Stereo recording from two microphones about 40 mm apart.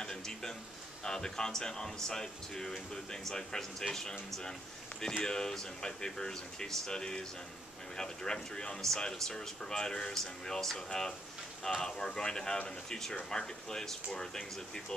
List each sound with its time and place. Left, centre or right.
0.0 s a sound: centre
1.0 s speech: centre
5.2 s speech: centre